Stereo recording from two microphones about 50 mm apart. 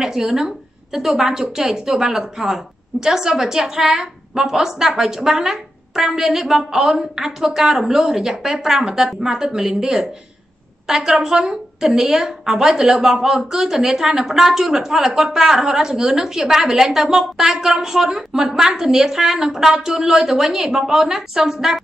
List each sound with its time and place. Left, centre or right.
0.0 s speech: centre